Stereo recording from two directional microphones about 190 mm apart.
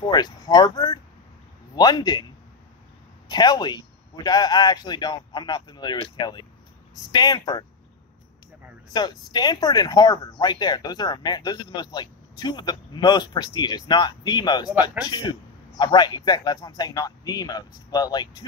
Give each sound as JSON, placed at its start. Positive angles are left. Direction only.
{"t": 0.0, "sound": "speech", "side_deg": 20}
{"t": 3.3, "sound": "speech", "side_deg": 20}
{"t": 8.9, "sound": "speech", "side_deg": 20}
{"t": 15.8, "sound": "speech", "side_deg": 20}